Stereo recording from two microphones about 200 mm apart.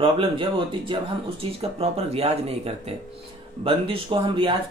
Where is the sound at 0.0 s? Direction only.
25° right (ahead or behind).